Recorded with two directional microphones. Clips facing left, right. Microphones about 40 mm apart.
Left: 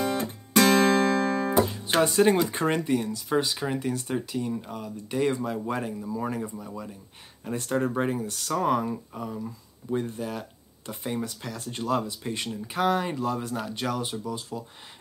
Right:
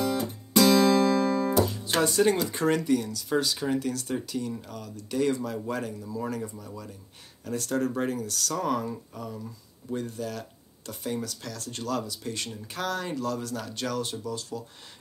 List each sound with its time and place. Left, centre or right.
0.0 s music: left
1.5 s speech: left